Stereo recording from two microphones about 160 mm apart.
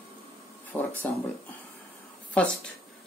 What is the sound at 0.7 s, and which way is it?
Speech, 5° left (ahead or behind).